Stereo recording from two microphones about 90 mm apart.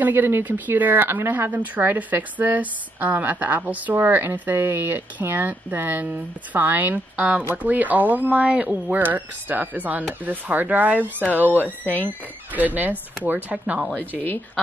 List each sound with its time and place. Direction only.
0.0 s speech: 20° right (ahead or behind)